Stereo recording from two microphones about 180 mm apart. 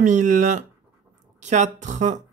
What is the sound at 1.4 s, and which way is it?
Speech, 40° right (ahead or behind).